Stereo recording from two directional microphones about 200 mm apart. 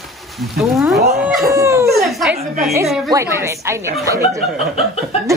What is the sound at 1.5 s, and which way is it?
Dog, 15° right (ahead or behind).